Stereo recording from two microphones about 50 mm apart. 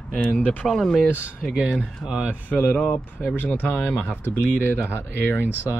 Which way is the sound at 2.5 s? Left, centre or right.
Left.